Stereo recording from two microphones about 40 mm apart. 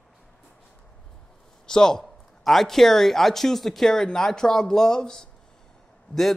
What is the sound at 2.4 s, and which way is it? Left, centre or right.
Speech, centre.